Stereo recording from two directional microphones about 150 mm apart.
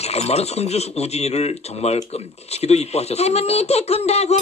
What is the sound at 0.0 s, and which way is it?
Speech, 45° left (ahead or behind).